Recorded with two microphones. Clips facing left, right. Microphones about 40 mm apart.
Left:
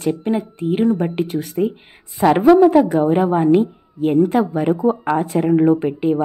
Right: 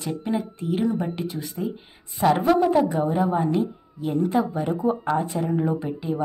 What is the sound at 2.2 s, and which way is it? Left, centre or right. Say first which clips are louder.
Speech: left 8 dB; left.